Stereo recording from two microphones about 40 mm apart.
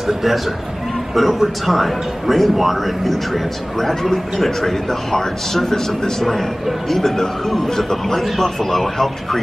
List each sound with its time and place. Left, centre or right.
1.1 s a man's voice: centre